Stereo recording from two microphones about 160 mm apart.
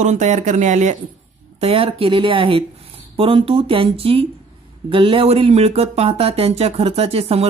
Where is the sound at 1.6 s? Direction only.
35° right (ahead or behind).